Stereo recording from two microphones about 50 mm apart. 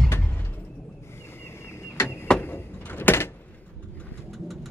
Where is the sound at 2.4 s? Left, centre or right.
Left.